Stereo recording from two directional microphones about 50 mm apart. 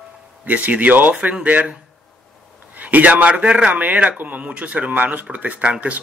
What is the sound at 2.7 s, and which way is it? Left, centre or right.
Speech, right.